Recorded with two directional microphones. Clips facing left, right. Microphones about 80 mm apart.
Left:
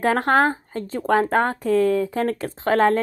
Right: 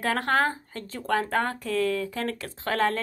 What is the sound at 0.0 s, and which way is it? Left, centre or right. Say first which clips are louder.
Speech: left 6 dB; left.